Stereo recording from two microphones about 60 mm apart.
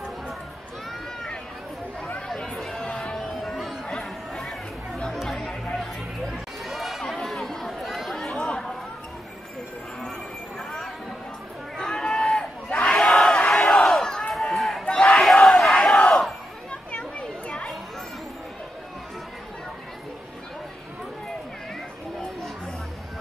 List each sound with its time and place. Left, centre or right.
2.2 s a sound: centre
3.2 s music: centre
3.8 s chatter: centre
6.6 s chatter: centre
11.7 s crowd: centre
12.9 s battle cry: centre
14.3 s run: centre
15.1 s battle cry: centre
17.2 s children playing: centre